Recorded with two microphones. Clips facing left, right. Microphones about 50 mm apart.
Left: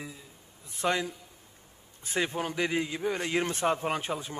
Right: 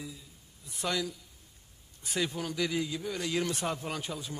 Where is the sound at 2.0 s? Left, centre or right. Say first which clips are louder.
Left 3 dB; left.